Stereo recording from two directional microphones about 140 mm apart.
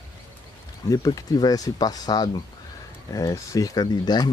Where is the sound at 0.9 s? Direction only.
25° left (ahead or behind).